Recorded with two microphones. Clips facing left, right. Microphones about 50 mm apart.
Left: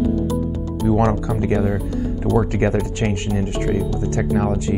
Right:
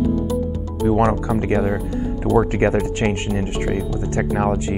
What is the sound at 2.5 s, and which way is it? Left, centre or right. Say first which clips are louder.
Speech: right 2 dB; right.